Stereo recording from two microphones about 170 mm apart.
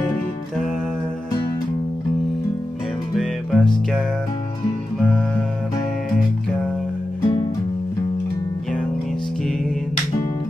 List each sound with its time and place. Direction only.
3.2 s music: 5° left (ahead or behind)
7.2 s music: 25° left (ahead or behind)